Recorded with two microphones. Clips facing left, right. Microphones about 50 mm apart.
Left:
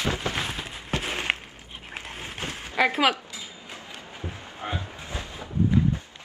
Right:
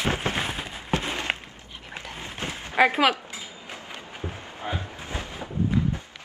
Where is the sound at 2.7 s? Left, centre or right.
Right.